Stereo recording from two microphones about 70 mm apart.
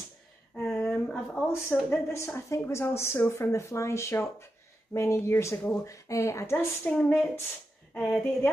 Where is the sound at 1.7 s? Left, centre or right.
Left.